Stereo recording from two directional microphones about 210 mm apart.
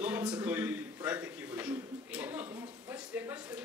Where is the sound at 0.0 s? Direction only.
5° right (ahead or behind).